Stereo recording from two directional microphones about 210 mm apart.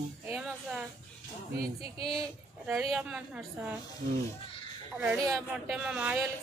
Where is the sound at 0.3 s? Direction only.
5° right (ahead or behind).